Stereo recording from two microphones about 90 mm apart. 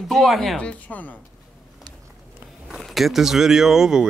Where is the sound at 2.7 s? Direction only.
Centre (ahead or behind).